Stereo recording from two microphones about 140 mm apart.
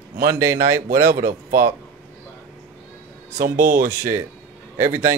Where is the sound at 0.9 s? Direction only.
70° right (ahead or behind).